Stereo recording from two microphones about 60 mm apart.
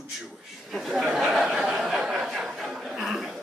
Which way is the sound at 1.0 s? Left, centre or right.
Centre.